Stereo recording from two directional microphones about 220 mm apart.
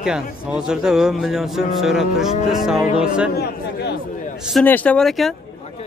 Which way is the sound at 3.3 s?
45° left (ahead or behind).